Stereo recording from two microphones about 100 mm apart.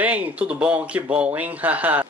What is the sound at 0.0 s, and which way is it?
Speech, 15° right (ahead or behind).